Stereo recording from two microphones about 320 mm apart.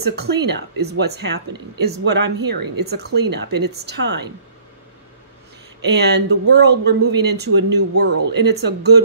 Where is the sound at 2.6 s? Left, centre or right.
Right.